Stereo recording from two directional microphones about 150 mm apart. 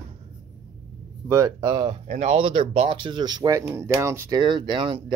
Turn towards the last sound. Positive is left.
turn(degrees=-30)  # may be behind; listen again after turning